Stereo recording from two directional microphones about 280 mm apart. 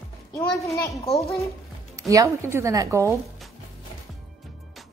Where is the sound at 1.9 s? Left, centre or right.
Centre.